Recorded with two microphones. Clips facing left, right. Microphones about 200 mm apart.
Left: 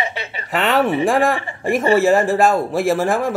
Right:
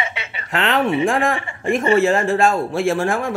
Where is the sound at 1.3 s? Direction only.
35° left (ahead or behind).